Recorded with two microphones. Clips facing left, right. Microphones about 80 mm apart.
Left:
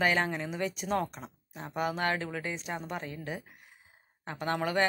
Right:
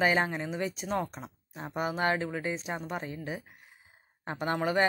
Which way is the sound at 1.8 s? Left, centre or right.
Centre.